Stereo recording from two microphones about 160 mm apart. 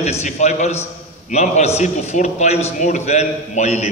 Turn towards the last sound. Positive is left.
turn(degrees=45)  # may be behind; listen again after turning